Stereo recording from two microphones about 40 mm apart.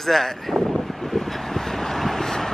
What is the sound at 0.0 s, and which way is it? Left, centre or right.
Vehicle, centre.